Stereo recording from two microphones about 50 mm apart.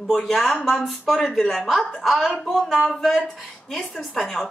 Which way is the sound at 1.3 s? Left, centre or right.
Centre.